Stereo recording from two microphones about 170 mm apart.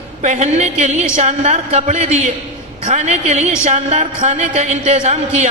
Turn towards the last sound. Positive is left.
turn(degrees=-40)  # may be behind; listen again after turning